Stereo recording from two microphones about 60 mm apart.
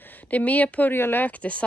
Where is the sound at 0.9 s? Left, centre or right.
Left.